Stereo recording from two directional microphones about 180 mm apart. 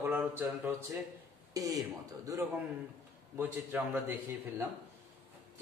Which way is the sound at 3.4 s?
5° right (ahead or behind).